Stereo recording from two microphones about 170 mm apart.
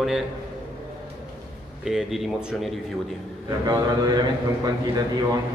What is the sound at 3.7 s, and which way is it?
Speech, 20° right (ahead or behind).